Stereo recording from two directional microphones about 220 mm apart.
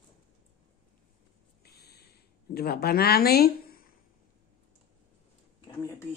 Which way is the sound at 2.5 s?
45° left (ahead or behind).